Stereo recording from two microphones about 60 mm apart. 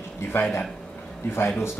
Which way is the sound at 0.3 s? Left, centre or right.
Left.